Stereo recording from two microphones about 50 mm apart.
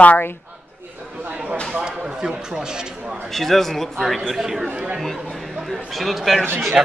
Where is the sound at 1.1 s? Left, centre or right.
Right.